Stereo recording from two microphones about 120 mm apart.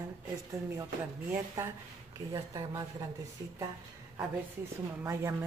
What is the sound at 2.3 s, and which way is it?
Speech, 30° right (ahead or behind).